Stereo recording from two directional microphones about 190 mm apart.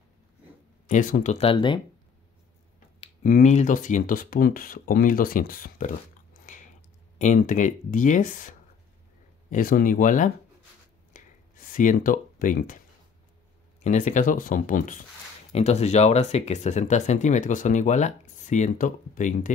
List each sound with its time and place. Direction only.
0.8 s speech: 40° left (ahead or behind); by 1.8 s 25° left (ahead or behind)
3.3 s speech: 40° left (ahead or behind)
7.2 s speech: 40° left (ahead or behind)
11.1 s a sound: 45° left (ahead or behind)
13.8 s speech: 40° left (ahead or behind)